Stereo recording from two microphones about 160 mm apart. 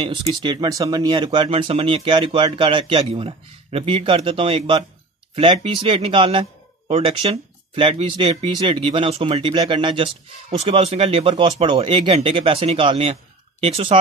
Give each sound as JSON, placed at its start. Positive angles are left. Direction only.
{"t": 0.3, "sound": "speech", "side_deg": -30}